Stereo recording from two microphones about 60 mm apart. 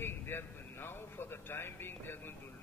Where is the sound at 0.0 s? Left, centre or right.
Left.